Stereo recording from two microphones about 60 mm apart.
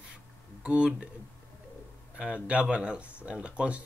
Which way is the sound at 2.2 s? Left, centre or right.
Centre.